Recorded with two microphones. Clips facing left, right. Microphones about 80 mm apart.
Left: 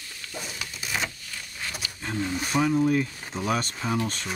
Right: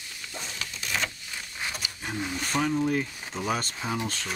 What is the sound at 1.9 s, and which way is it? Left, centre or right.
Wild animals, centre.